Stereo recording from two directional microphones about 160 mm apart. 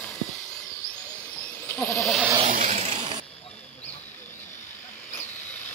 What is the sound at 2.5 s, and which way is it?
Vehicle, 50° right (ahead or behind).